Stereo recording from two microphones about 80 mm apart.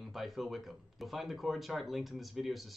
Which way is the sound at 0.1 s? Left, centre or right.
Centre.